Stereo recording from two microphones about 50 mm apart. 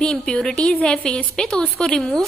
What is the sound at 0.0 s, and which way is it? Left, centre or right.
Speech, centre.